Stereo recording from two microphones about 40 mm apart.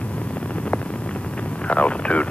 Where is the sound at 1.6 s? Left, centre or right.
Left.